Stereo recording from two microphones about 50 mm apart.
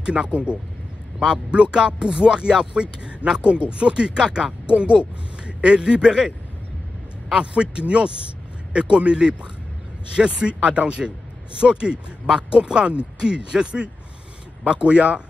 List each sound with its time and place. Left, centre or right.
0.0 s speech: centre
7.3 s speech: centre